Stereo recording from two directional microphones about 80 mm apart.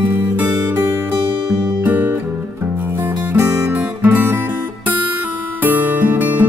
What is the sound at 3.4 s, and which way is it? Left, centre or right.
Music, right.